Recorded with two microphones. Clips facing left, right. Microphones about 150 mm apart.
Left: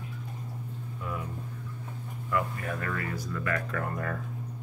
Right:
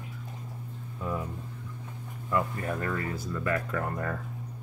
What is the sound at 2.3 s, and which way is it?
Speech, 30° right (ahead or behind).